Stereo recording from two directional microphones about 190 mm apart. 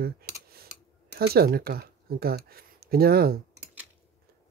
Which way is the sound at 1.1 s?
60° right (ahead or behind).